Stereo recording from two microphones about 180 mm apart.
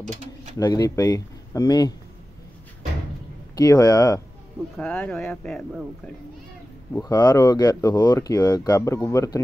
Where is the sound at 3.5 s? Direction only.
20° left (ahead or behind).